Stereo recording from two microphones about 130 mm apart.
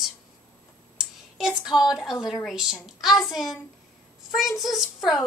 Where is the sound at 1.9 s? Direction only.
Centre (ahead or behind).